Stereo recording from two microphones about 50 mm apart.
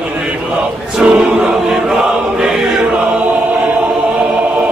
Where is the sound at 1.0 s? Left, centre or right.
Centre.